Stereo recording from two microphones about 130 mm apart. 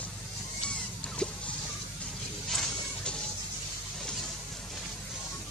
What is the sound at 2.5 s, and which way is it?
Music, 5° left (ahead or behind).